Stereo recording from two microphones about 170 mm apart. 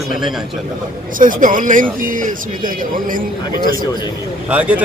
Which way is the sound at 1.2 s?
50° right (ahead or behind).